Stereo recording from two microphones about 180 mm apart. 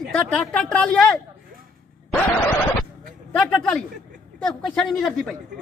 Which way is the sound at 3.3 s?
5° left (ahead or behind).